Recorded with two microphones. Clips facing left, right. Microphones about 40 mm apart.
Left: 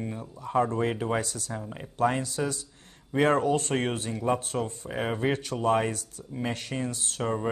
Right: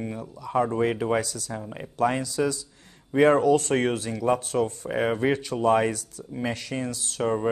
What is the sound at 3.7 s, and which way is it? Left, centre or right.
Speech, right.